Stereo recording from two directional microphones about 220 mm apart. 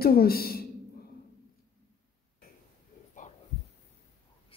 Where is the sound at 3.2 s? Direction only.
35° left (ahead or behind).